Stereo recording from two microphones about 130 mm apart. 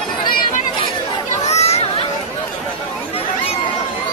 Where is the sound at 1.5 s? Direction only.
55° left (ahead or behind).